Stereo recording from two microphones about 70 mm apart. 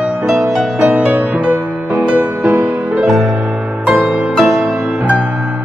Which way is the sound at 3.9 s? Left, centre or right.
Centre.